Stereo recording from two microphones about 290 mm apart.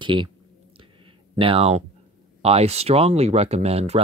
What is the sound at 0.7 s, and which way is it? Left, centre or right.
Clicking, centre.